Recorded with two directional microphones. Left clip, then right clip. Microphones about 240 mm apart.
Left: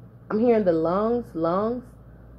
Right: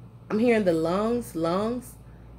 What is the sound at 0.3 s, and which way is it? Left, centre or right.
A woman's voice, right.